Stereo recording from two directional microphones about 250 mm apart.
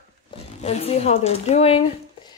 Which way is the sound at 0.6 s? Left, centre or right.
Left.